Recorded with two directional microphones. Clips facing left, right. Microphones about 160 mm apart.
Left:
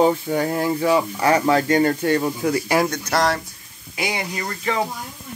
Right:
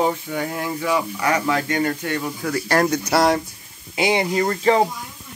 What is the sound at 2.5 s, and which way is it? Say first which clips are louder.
Speech: even; 10° left (ahead or behind).